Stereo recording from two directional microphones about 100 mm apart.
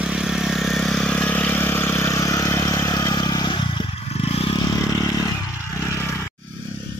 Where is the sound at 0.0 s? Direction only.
5° right (ahead or behind); by 4.6 s 80° left.